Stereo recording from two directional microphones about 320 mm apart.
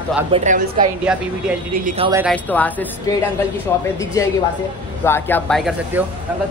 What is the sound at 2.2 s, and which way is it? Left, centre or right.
Speech, centre.